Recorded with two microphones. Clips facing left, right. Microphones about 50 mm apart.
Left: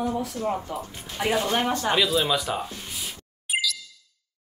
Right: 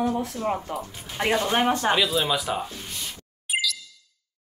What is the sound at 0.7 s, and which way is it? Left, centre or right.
Speech, centre.